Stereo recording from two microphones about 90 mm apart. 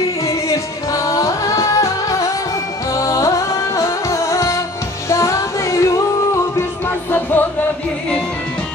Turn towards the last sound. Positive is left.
turn(degrees=20)  # may be behind; listen again after turning